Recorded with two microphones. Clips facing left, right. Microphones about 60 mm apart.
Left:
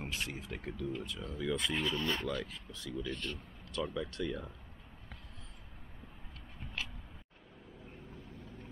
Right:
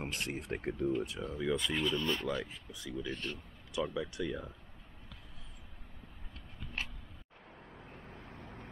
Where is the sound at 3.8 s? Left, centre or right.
Centre.